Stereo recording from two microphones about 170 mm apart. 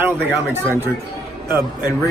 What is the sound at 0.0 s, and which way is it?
Speech, 15° right (ahead or behind).